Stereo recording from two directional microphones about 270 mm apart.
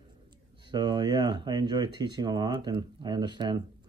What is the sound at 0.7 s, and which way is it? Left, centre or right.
Speech, centre.